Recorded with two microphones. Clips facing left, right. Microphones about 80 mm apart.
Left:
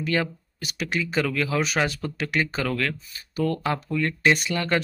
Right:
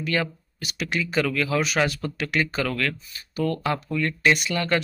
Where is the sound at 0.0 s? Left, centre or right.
Left.